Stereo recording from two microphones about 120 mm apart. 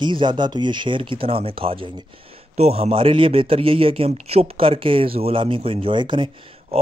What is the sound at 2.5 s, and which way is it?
Speech, 60° right (ahead or behind).